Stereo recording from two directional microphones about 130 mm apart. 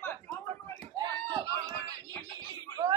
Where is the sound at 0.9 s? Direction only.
30° right (ahead or behind).